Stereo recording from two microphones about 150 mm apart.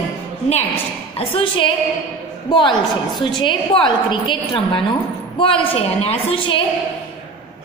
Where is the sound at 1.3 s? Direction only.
35° left (ahead or behind).